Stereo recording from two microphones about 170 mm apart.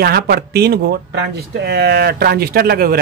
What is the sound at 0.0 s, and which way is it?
Speech, 65° right (ahead or behind).